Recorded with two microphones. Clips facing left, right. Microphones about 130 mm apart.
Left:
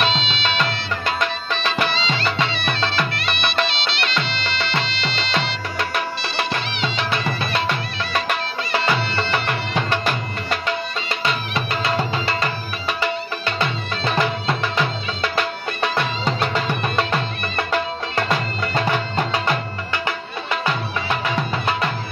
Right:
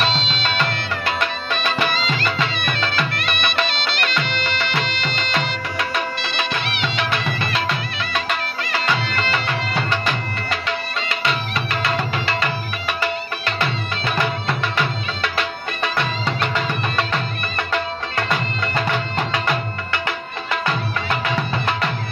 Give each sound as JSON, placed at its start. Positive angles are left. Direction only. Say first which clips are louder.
{"t": 0.0, "sound": "music", "louder": "even", "side_deg": -40}
{"t": 1.9, "sound": "music", "louder": "even", "side_deg": -50}
{"t": 3.2, "sound": "music of bollywood", "louder": "even", "side_deg": -50}
{"t": 3.6, "sound": "music", "louder": "right 1 dB", "side_deg": -45}
{"t": 6.2, "sound": "music", "louder": "even", "side_deg": -65}
{"t": 11.5, "sound": "music", "louder": "left 1 dB", "side_deg": 30}
{"t": 14.1, "sound": "music", "louder": "left 1 dB", "side_deg": 20}